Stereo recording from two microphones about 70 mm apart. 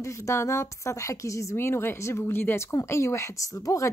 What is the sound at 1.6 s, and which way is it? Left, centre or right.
Speech, left.